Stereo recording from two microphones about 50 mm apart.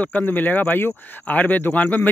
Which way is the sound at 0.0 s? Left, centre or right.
Left.